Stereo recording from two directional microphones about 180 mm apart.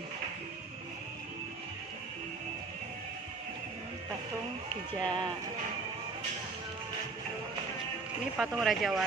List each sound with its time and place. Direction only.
5.0 s speech: 25° right (ahead or behind)
8.4 s speech: centre (ahead or behind)